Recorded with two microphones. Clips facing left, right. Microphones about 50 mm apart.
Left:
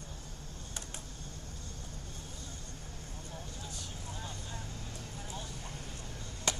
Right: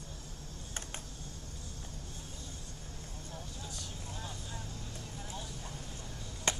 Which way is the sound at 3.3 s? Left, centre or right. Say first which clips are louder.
Even; centre.